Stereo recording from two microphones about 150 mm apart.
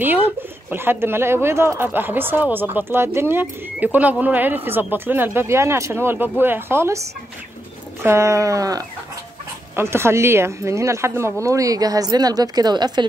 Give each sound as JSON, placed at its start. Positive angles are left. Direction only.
{"t": 0.7, "sound": "speech", "side_deg": -15}
{"t": 8.0, "sound": "speech", "side_deg": -20}